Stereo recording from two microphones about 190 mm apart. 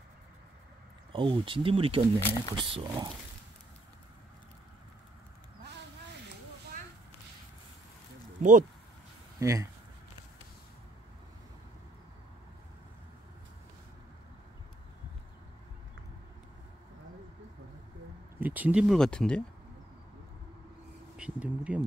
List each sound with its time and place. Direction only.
1.1 s speech: 25° right (ahead or behind)
2.1 s speech: 10° left (ahead or behind)
2.5 s speech: 25° right (ahead or behind)
8.4 s speech: 45° right (ahead or behind)
9.4 s speech: 15° right (ahead or behind)
18.4 s speech: 10° right (ahead or behind)
21.2 s speech: 5° right (ahead or behind)